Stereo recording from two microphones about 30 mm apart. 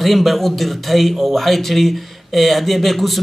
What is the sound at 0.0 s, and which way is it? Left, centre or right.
Speech, centre.